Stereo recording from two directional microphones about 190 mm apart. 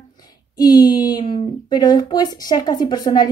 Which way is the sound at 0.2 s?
20° left (ahead or behind).